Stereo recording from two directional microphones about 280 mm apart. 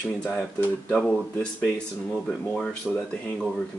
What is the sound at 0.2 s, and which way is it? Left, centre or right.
Speech, centre.